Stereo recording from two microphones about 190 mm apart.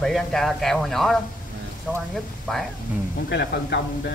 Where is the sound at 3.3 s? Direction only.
60° left (ahead or behind).